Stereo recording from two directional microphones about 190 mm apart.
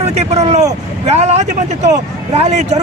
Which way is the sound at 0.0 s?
35° right (ahead or behind).